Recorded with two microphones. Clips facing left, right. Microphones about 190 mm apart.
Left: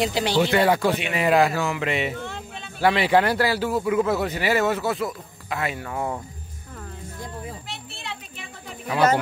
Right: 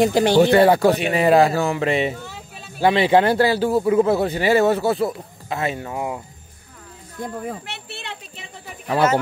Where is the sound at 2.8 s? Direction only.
25° right (ahead or behind).